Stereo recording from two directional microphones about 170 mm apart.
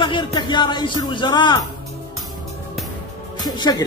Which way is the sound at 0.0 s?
30° left (ahead or behind).